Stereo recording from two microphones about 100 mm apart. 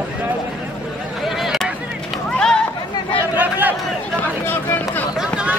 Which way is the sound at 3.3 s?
15° right (ahead or behind).